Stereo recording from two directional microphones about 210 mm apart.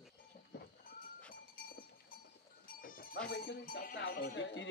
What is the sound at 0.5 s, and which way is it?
Goat, 50° left (ahead or behind).